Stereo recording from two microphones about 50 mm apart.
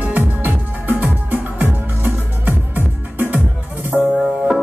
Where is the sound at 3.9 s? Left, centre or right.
Centre.